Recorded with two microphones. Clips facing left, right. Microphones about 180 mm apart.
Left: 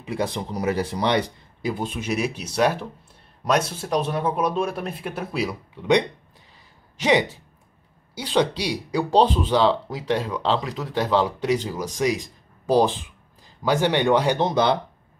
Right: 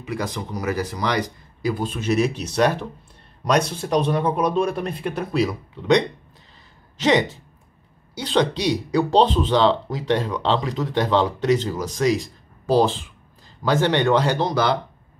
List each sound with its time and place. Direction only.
0.0 s speech: 30° left (ahead or behind)